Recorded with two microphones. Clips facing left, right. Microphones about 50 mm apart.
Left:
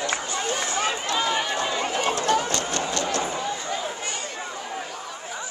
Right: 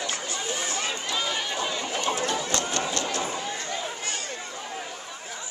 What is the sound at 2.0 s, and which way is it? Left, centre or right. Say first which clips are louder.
Run: left 5 dB; left.